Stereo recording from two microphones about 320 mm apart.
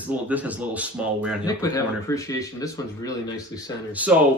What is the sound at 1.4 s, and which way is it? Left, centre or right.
Speech, centre.